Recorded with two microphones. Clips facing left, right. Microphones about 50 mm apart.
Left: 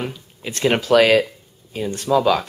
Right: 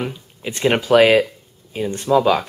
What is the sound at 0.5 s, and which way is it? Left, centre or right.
Speech, centre.